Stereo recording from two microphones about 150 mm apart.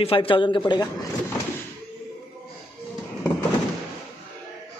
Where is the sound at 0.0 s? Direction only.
35° left (ahead or behind).